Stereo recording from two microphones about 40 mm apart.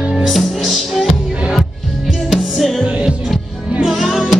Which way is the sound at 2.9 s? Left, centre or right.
Right.